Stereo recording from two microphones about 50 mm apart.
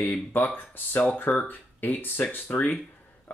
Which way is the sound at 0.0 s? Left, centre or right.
Left.